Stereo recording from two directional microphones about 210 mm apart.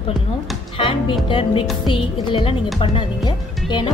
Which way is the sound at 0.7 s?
25° left (ahead or behind).